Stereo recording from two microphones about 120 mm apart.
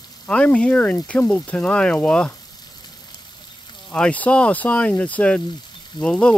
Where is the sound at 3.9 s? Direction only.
10° left (ahead or behind).